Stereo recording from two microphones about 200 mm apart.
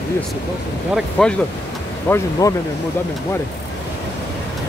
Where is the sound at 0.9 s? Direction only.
5° left (ahead or behind).